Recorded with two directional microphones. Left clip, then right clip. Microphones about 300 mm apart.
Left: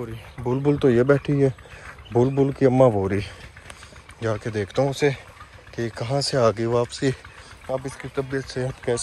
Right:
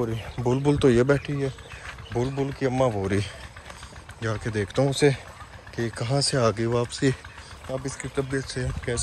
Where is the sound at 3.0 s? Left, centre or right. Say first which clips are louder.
Left 1 dB; centre.